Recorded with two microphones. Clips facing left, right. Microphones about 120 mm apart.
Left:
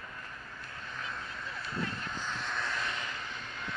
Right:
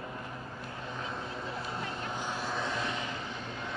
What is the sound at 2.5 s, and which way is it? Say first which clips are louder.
Vehicle: right 2 dB; 20° right (ahead or behind).